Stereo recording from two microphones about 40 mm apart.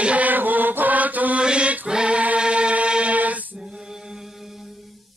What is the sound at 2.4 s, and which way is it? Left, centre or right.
Music, right.